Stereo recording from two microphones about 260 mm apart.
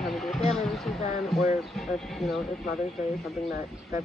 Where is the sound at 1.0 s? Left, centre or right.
Left.